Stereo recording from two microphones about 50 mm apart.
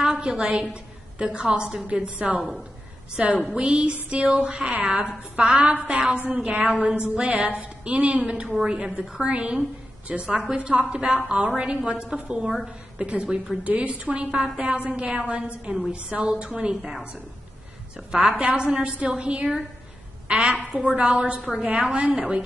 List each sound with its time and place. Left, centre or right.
0.0 s a sound: right
1.1 s a woman's voice: centre
2.0 s a woman's voice: right
18.1 s a woman's voice: right